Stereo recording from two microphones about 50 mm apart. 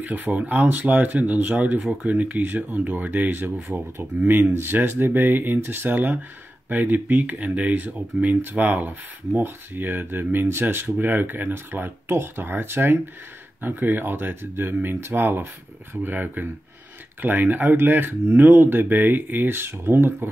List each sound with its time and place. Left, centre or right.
0.0 s speech: right